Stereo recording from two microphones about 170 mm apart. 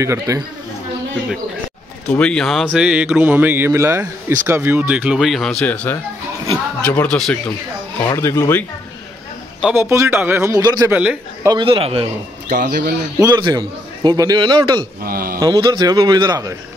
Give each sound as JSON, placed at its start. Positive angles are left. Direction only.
{"t": 0.0, "sound": "a man's voice", "side_deg": -15}
{"t": 2.0, "sound": "speech", "side_deg": 5}
{"t": 8.1, "sound": "speech", "side_deg": 15}
{"t": 9.6, "sound": "a man's voice", "side_deg": -10}
{"t": 10.9, "sound": "a man's voice", "side_deg": -5}
{"t": 11.4, "sound": "a man's voice", "side_deg": -30}
{"t": 12.5, "sound": "speech", "side_deg": -50}
{"t": 13.2, "sound": "a man's voice", "side_deg": -25}
{"t": 15.0, "sound": "a sound", "side_deg": -60}
{"t": 15.3, "sound": "a man's voice", "side_deg": -25}